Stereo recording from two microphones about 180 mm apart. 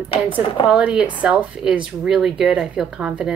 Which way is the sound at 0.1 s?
30° left (ahead or behind).